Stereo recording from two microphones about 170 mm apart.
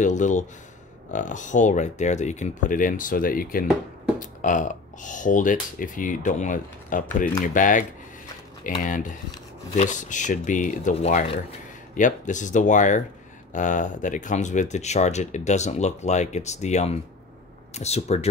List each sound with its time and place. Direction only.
0.0 s speech: 45° left (ahead or behind)
8.8 s speech: 50° left (ahead or behind)